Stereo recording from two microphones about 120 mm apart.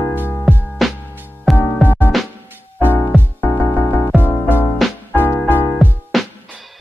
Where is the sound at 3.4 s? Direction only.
15° left (ahead or behind).